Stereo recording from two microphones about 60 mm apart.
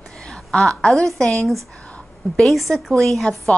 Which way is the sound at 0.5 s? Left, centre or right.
Centre.